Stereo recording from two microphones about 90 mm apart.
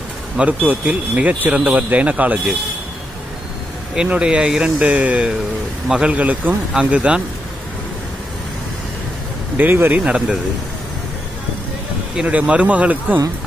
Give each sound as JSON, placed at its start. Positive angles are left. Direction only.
{"t": 0.7, "sound": "speech", "side_deg": -15}
{"t": 3.9, "sound": "speech", "side_deg": -10}
{"t": 9.6, "sound": "speech", "side_deg": -20}
{"t": 12.2, "sound": "speech", "side_deg": -15}